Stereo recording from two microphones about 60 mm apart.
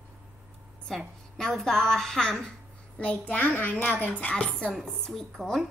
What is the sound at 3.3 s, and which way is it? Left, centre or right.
Speech, left.